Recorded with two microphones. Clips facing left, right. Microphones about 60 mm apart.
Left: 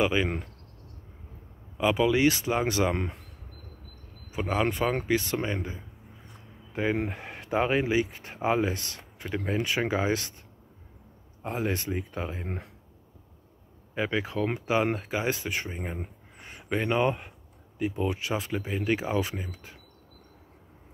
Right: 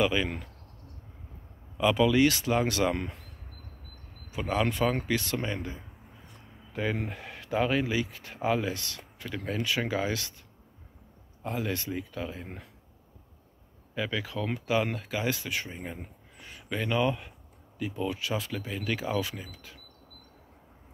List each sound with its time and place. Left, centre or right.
0.0 s speech: left
1.8 s speech: left
4.3 s speech: left
11.4 s speech: left
13.9 s speech: left